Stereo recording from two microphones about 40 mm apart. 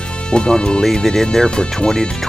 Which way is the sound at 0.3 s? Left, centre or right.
Left.